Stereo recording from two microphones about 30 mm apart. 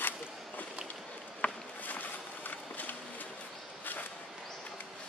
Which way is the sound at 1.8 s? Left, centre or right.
Left.